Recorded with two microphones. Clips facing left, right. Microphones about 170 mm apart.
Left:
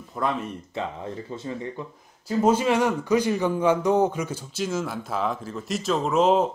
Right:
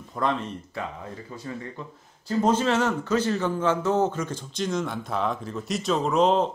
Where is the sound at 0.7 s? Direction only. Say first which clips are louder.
Left 5 dB; 25° left (ahead or behind).